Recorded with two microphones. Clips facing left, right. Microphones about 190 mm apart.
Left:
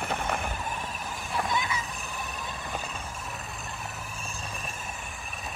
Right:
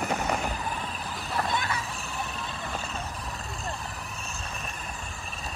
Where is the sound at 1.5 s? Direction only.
60° right (ahead or behind).